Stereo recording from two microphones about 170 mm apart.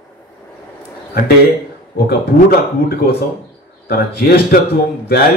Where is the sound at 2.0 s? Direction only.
65° left (ahead or behind).